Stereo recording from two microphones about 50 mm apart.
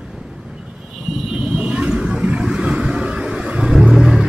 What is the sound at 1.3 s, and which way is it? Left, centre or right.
Vehicle, centre.